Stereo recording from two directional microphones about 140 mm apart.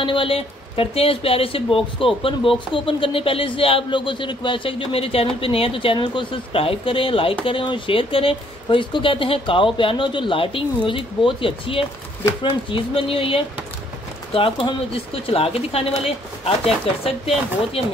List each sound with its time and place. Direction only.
0.0 s speech: 40° left (ahead or behind)